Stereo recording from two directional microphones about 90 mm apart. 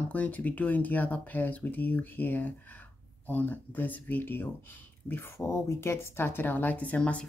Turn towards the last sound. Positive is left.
turn(degrees=15)  # may be behind; listen again after turning